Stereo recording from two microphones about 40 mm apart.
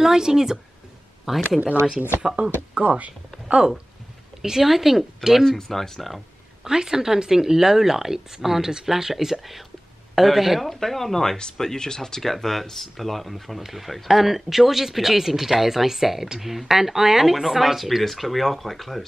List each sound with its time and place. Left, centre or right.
0.0 s speech: centre
2.7 s speech: right
4.4 s speech: centre
5.4 s speech: centre
6.6 s speech: centre